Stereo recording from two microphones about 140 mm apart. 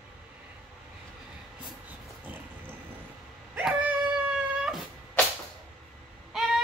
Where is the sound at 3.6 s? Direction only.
10° right (ahead or behind).